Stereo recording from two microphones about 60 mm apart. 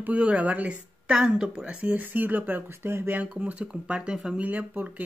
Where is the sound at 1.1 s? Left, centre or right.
Centre; by 3.1 s right.